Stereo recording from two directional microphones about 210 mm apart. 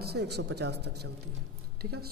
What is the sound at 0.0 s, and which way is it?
Speech, 50° right (ahead or behind).